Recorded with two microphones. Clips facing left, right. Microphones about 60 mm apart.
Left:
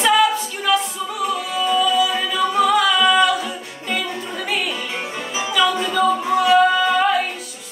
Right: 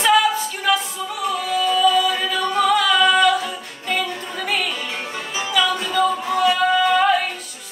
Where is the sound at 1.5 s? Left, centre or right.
Centre.